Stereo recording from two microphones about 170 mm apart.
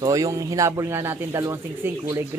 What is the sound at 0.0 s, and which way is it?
Speech, 20° right (ahead or behind).